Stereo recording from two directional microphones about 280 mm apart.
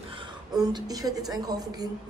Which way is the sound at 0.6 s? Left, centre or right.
Centre.